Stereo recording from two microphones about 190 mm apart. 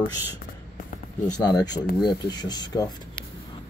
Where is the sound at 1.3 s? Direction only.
20° left (ahead or behind).